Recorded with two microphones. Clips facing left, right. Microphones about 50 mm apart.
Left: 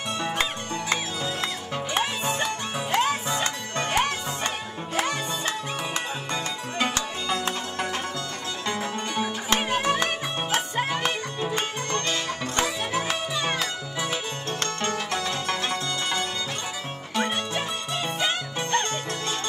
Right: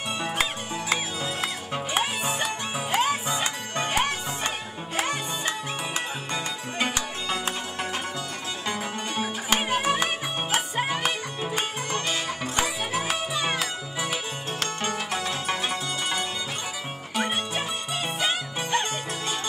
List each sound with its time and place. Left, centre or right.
0.2 s music: centre